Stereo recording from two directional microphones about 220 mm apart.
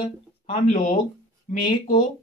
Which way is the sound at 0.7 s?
35° left (ahead or behind).